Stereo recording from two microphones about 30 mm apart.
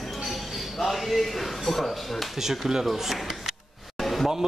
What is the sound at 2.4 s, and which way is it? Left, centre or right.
Speech, centre.